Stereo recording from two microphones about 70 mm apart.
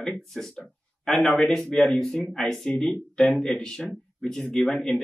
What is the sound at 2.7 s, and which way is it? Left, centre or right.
Speech, centre.